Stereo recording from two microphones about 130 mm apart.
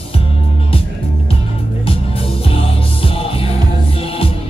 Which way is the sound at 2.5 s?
45° left (ahead or behind).